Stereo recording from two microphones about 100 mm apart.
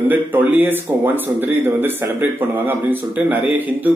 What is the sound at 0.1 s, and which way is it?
Speech, 15° right (ahead or behind).